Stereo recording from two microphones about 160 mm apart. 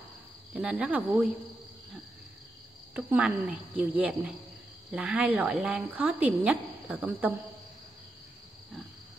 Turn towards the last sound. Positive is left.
turn(degrees=-10)  # may be behind; listen again after turning